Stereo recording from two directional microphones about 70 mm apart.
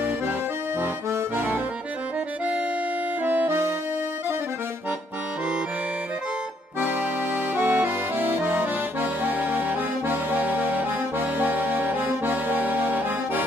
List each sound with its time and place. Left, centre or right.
1.3 s accordion: right
3.3 s accordion: right
6.8 s accordion: right